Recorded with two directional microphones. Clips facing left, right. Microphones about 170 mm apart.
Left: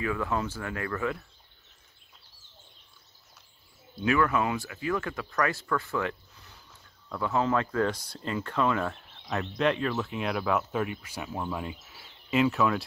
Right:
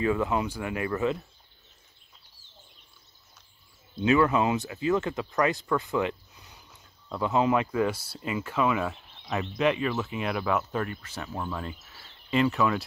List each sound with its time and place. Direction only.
0.0 s speech: 20° right (ahead or behind)
3.9 s speech: 20° right (ahead or behind); by 12.8 s centre (ahead or behind)